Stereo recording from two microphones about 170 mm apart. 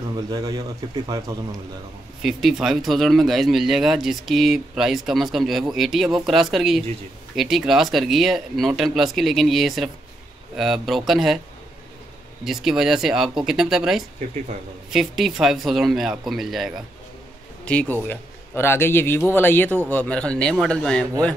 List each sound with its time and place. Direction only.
0.3 s a man's voice: 20° right (ahead or behind)
2.2 s speech: centre (ahead or behind)
12.4 s speech: centre (ahead or behind)
17.6 s speech: 10° left (ahead or behind)